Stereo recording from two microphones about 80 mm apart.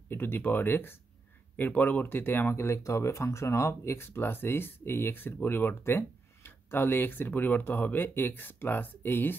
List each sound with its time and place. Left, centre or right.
0.1 s speech: left